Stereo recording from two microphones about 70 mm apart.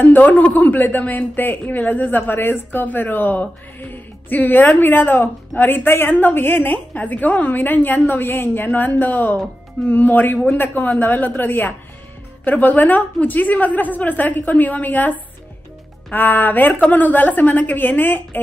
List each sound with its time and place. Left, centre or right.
0.0 s speech: left